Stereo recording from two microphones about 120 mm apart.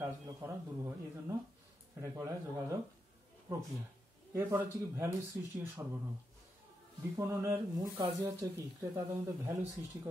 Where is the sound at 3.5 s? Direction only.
25° right (ahead or behind).